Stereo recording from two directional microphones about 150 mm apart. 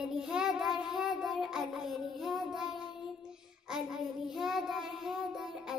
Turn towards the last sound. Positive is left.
turn(degrees=0)  # may be behind; listen again after turning